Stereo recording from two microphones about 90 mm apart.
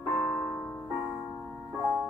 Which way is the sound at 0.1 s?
15° left (ahead or behind).